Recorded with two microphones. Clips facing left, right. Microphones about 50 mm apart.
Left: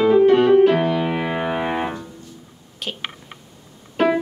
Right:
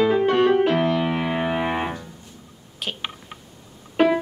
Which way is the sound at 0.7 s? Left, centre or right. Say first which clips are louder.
Left 2 dB; centre.